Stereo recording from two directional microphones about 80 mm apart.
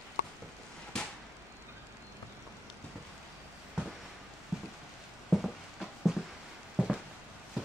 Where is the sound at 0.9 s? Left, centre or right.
Centre.